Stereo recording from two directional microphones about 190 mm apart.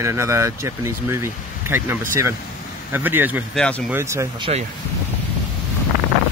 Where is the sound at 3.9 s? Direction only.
15° right (ahead or behind).